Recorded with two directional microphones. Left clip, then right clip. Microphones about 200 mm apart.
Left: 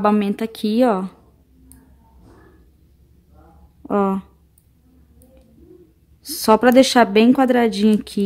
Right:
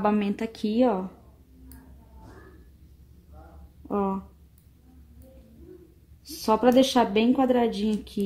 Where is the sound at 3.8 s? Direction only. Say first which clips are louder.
Left 8 dB; 35° left (ahead or behind).